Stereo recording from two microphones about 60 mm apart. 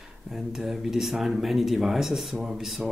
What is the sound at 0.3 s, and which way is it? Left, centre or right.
Speech, centre.